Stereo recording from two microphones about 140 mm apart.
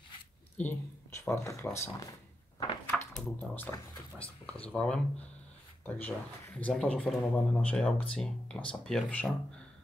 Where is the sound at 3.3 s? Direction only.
10° left (ahead or behind).